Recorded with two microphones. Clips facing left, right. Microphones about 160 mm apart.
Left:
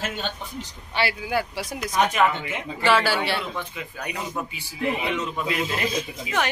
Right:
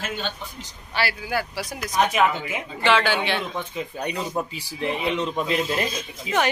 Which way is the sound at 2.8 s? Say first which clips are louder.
Even; 5° left (ahead or behind).